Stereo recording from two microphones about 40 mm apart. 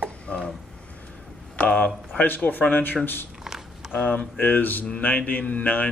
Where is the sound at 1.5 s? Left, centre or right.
Left.